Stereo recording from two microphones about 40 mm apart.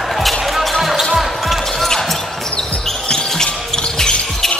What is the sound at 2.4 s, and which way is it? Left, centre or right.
Basketball bounce, centre.